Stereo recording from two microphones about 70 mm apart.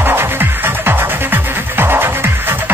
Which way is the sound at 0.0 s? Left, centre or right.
Right.